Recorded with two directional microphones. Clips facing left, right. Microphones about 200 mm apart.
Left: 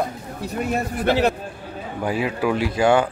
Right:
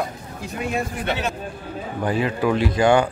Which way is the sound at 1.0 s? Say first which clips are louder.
Left 6 dB; 65° left (ahead or behind).